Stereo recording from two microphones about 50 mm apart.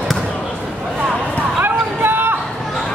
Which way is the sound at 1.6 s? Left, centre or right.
Right.